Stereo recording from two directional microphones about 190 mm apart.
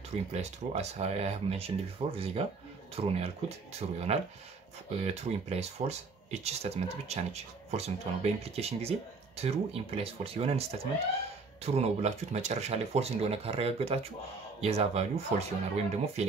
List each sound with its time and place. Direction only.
0.3 s speech: 35° right (ahead or behind)
5.0 s speech: 35° right (ahead or behind)
11.6 s speech: 35° right (ahead or behind)